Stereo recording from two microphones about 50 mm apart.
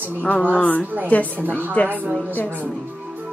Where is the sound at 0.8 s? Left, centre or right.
Right.